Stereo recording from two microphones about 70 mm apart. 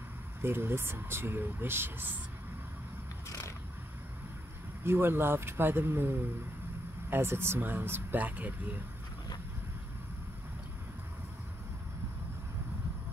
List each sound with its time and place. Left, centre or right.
0.4 s speech: right
4.8 s speech: right